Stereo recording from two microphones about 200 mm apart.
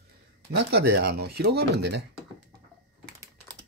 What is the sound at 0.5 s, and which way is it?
Speech, 60° right (ahead or behind).